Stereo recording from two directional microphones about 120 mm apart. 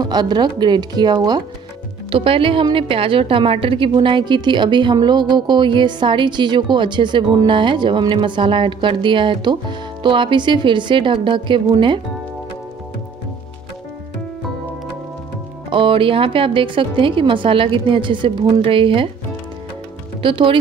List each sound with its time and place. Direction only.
0.0 s speech: 35° right (ahead or behind)
2.0 s a woman's voice: 50° right (ahead or behind)
15.7 s a woman's voice: 45° right (ahead or behind)
20.2 s speech: 45° right (ahead or behind)